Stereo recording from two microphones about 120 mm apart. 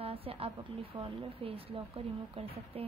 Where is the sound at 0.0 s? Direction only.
55° right (ahead or behind).